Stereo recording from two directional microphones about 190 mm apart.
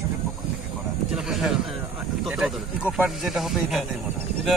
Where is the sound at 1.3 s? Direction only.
Centre (ahead or behind).